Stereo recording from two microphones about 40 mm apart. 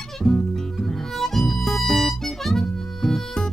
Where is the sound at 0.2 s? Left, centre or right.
Centre.